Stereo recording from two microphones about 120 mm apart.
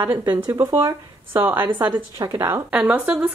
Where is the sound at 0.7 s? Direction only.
35° right (ahead or behind).